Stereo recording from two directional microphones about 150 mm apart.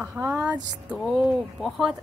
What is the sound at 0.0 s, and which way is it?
A woman's voice, 15° right (ahead or behind).